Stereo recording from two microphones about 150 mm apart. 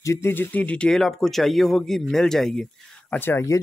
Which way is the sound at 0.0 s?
20° left (ahead or behind).